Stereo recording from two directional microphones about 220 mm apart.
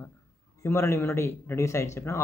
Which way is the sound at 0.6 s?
10° left (ahead or behind).